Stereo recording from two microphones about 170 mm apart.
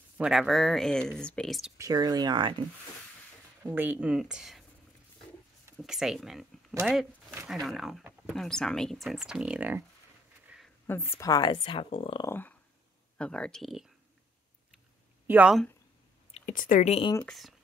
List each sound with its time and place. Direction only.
0.2 s speech: centre (ahead or behind)
1.8 s speech: 25° right (ahead or behind)
3.6 s speech: 10° right (ahead or behind)
5.8 s speech: centre (ahead or behind)
10.9 s speech: 15° left (ahead or behind); by 12.3 s 35° left (ahead or behind)
12.3 s speech: 10° left (ahead or behind)
15.2 s speech: 10° right (ahead or behind)
16.3 s a sound: 40° left (ahead or behind)
16.5 s speech: 50° left (ahead or behind)
17.3 s speech: centre (ahead or behind)